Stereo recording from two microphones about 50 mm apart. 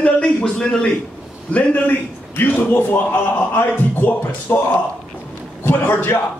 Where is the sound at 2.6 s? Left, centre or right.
Left.